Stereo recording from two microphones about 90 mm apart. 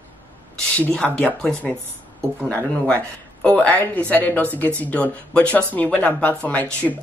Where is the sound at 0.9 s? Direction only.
10° left (ahead or behind).